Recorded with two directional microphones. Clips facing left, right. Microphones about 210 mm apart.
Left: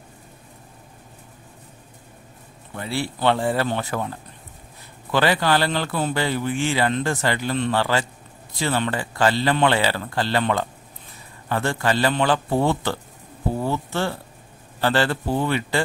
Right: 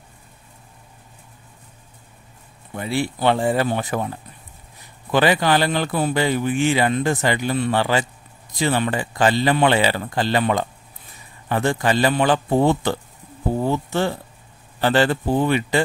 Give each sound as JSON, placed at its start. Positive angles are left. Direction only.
{"t": 2.7, "sound": "speech", "side_deg": -15}
{"t": 5.1, "sound": "speech", "side_deg": -15}
{"t": 13.6, "sound": "a sound", "side_deg": -15}
{"t": 14.8, "sound": "speech", "side_deg": -15}